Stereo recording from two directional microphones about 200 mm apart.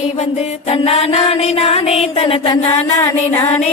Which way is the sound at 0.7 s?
30° left (ahead or behind).